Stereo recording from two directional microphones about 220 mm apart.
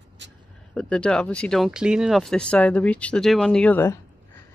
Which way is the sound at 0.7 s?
5° left (ahead or behind).